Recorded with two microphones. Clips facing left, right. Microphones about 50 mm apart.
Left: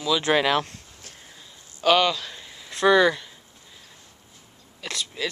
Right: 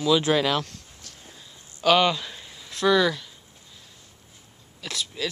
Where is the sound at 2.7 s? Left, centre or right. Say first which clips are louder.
Left 3 dB; centre.